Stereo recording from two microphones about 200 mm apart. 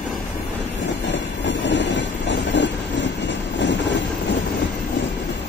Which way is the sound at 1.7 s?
65° left (ahead or behind).